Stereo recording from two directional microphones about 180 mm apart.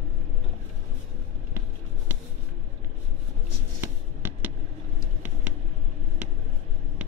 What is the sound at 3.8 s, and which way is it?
Writing, 15° right (ahead or behind).